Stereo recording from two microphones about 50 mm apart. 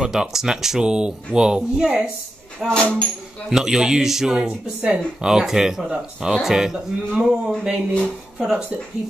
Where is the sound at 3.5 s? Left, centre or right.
Centre.